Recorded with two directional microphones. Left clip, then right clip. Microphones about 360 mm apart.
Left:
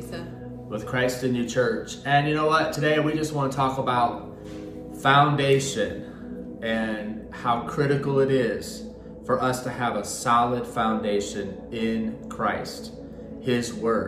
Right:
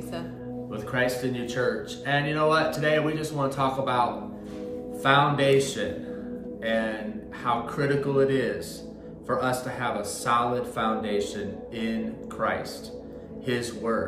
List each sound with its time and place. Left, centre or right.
0.7 s speech: centre